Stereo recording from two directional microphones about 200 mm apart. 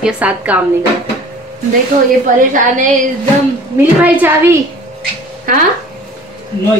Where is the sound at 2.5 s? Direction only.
40° right (ahead or behind).